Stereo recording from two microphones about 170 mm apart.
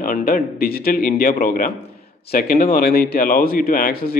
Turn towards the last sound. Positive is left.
turn(degrees=55)  # may be behind; listen again after turning